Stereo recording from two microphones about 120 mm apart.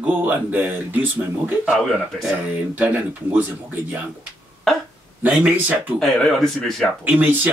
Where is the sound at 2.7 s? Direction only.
15° right (ahead or behind).